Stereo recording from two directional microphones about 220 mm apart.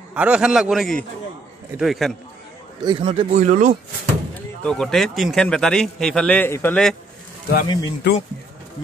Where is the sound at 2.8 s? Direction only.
25° right (ahead or behind).